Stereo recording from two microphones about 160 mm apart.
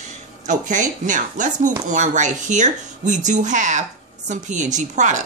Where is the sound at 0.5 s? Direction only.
50° right (ahead or behind).